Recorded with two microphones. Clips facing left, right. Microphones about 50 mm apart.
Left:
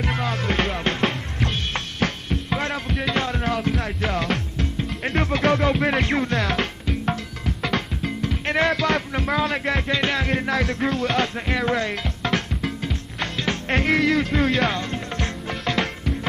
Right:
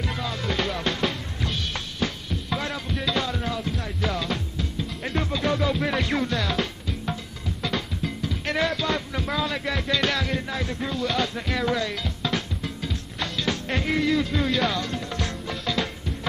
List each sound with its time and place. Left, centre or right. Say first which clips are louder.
0.0 s music: left 5 dB; left
6.5 s music: left 3 dB; left
9.8 s music: right 2 dB; left
10.2 s music: left 4 dB; left
10.5 s music: left 6 dB; left
11.3 s music: left 3 dB; left
11.9 s music: left 3 dB; left
12.8 s music: left 3 dB; left
13.7 s music: left 4 dB; left
15.6 s music: left 4 dB; left